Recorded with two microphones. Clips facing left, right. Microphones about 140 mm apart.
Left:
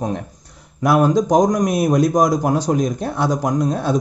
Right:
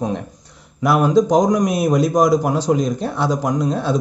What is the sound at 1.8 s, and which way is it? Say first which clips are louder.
Speech: left 2 dB; 50° left (ahead or behind).